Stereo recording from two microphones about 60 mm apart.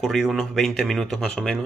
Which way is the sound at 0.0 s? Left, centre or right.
Centre.